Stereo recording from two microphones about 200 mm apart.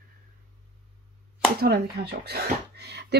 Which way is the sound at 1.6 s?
55° right (ahead or behind).